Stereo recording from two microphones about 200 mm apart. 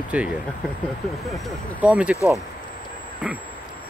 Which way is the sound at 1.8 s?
5° right (ahead or behind).